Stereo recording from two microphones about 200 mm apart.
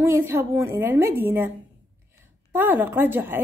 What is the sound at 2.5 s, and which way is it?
Speech, 10° right (ahead or behind).